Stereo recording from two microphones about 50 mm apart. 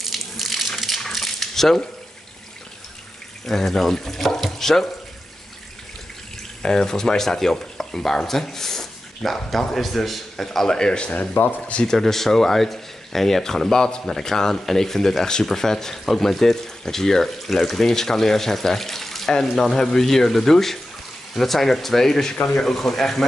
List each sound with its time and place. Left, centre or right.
0.0 s a sound: centre
3.4 s speech: centre
6.6 s speech: centre
11.1 s speech: left
11.7 s speech: centre